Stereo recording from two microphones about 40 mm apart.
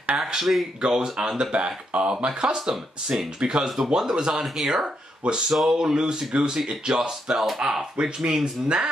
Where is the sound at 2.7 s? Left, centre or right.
Centre.